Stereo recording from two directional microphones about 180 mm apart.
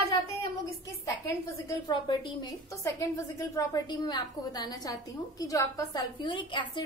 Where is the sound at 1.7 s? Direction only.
25° left (ahead or behind).